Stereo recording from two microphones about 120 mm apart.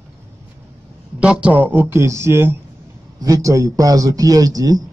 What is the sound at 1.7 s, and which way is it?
A man's voice, 20° right (ahead or behind).